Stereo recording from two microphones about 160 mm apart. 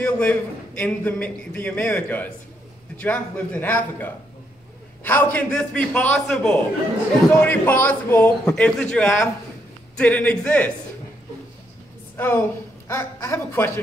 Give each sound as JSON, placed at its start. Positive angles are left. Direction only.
{"t": 0.0, "sound": "a man's voice", "side_deg": 10}
{"t": 12.2, "sound": "a woman's voice", "side_deg": 15}